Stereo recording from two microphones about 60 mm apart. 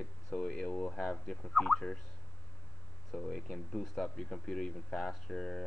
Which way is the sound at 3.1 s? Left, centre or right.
Centre.